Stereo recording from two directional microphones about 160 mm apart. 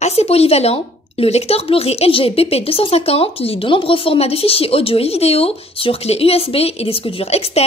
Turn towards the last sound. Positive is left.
turn(degrees=40)  # may be behind; listen again after turning